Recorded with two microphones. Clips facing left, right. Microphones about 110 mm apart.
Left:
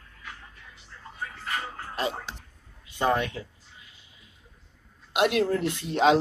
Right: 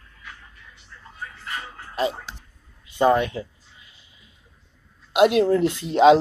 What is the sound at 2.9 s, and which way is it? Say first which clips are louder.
Speech: right 7 dB; 20° right (ahead or behind).